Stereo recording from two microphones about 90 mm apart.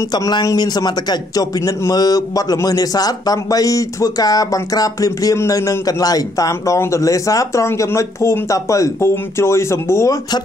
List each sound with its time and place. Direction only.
0.1 s a man's voice: 45° left (ahead or behind); by 10.1 s 30° left (ahead or behind)